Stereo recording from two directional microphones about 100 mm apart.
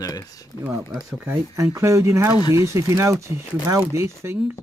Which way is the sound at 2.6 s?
30° right (ahead or behind).